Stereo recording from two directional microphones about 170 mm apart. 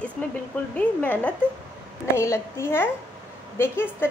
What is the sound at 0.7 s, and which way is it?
A woman's voice, 10° left (ahead or behind).